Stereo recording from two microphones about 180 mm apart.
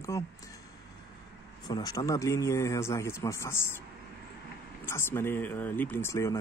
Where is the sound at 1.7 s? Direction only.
20° left (ahead or behind).